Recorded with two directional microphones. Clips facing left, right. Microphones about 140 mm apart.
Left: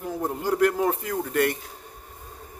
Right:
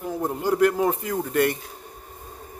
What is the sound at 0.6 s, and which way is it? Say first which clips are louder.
Speech: right 1 dB; 15° right (ahead or behind).